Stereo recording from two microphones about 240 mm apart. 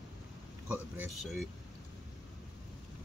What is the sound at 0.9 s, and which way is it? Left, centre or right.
Speech, centre.